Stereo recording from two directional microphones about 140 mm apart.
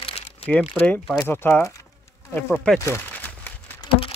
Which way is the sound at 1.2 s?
15° left (ahead or behind).